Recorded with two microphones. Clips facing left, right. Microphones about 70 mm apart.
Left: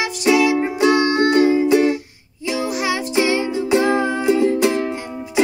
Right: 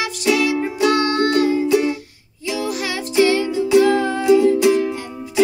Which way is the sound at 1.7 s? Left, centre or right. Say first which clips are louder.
Left 2 dB; left.